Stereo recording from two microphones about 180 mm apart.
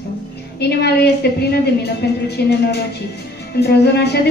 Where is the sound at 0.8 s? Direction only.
65° left (ahead or behind).